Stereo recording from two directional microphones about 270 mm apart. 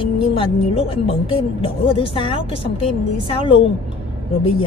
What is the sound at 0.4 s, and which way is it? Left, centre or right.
Speech, left.